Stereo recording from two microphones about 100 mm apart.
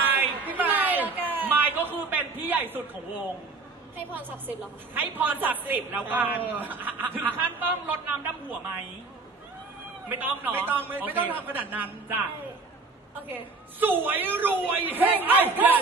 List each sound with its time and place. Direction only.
0.0 s a sound: 20° right (ahead or behind)
3.9 s a woman's voice: 20° right (ahead or behind)
10.0 s a woman's voice: 20° right (ahead or behind)
13.3 s a woman's voice: 20° right (ahead or behind)